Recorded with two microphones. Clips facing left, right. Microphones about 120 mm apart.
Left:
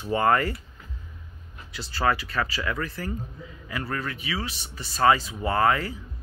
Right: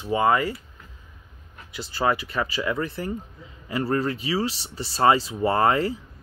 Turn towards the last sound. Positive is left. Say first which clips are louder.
# right 2 dB
turn(degrees=-30)  # may be behind; listen again after turning